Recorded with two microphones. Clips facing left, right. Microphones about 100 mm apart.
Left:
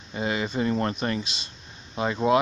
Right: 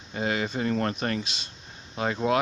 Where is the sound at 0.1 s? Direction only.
5° left (ahead or behind).